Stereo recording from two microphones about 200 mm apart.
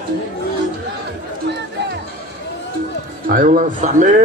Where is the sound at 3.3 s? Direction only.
45° right (ahead or behind).